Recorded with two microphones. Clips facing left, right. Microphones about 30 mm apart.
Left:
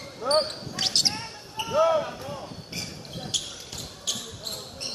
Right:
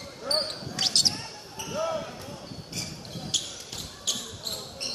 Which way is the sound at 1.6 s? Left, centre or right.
Left.